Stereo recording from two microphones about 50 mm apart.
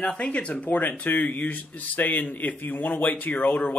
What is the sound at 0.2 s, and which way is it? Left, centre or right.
Speech, left.